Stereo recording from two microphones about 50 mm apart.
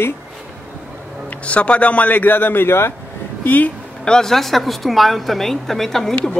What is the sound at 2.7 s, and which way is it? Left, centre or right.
Speech, left.